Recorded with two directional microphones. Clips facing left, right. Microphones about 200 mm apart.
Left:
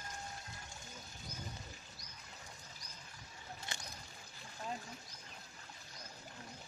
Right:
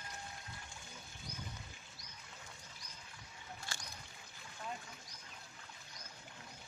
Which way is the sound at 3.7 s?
20° left (ahead or behind).